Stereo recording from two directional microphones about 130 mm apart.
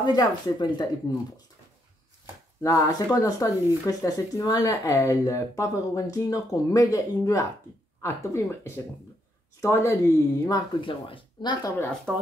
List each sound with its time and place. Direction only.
0.0 s speech: 35° left (ahead or behind)
2.6 s speech: 30° left (ahead or behind)
10.8 s speech: 40° left (ahead or behind)